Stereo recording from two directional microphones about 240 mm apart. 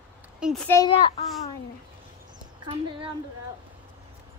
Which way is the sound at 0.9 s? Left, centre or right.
Left.